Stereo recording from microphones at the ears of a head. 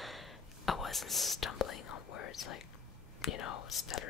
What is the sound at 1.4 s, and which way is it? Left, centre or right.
Speech, left.